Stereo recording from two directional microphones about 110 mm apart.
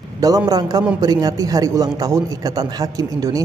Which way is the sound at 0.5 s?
35° right (ahead or behind).